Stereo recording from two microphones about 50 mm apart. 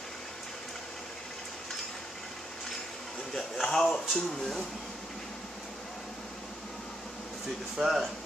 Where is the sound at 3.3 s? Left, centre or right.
Centre.